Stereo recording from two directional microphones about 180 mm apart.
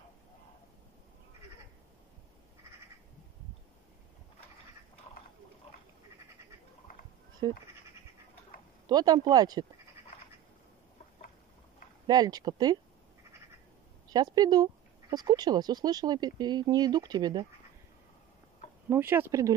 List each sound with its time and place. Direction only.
5.7 s goat: 35° left (ahead or behind)
7.4 s speech: 25° right (ahead or behind)
8.8 s speech: 20° right (ahead or behind)
12.1 s speech: 20° right (ahead or behind)
14.0 s speech: 20° right (ahead or behind)
18.9 s speech: 10° right (ahead or behind)